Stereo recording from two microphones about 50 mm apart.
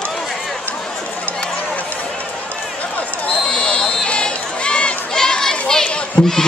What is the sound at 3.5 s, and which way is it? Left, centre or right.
Crowd, centre.